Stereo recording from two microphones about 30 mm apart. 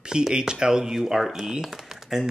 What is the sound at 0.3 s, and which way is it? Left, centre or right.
Speech, right.